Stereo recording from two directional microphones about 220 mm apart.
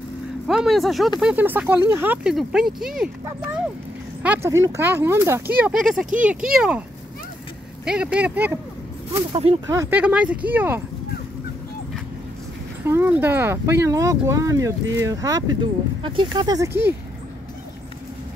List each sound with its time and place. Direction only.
0.5 s speech: centre (ahead or behind)
4.2 s speech: 10° right (ahead or behind)
7.8 s speech: 5° right (ahead or behind)
9.1 s speech: 25° right (ahead or behind)
9.7 s speech: 10° right (ahead or behind)
12.8 s speech: 10° right (ahead or behind)